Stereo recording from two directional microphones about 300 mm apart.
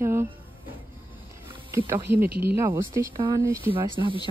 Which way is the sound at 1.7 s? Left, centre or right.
Centre.